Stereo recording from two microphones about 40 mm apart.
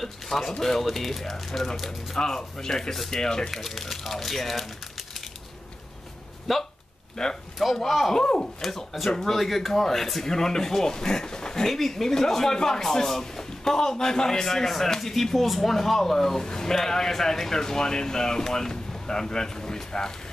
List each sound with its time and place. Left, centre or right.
0.0 s a man's voice: centre
3.6 s speech: centre
6.5 s speech: centre
7.2 s a man's voice: centre
8.2 s a man's voice: centre
8.5 s a man's voice: centre